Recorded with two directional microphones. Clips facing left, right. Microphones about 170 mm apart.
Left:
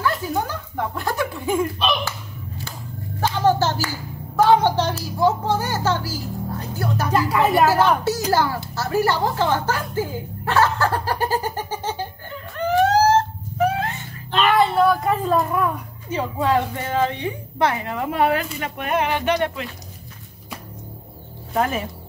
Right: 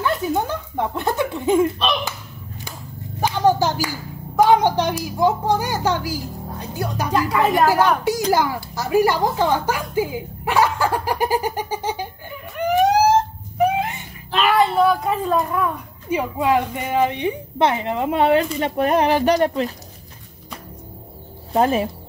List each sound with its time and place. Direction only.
0.0 s giggle: 20° right (ahead or behind)
2.0 s a sound: 15° right (ahead or behind)
4.4 s a woman's voice: 15° right (ahead or behind)
6.7 s music: 15° right (ahead or behind)
7.1 s speech: centre (ahead or behind)
7.6 s music: 15° right (ahead or behind)
8.7 s dog: 15° right (ahead or behind)
14.3 s child singing: centre (ahead or behind)
14.6 s a sound: 5° right (ahead or behind)
16.1 s a woman's voice: 15° right (ahead or behind)
18.6 s speech: 35° right (ahead or behind)
21.5 s speech: 30° right (ahead or behind)